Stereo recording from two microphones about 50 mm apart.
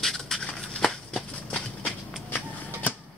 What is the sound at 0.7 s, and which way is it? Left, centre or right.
Shuffle, centre.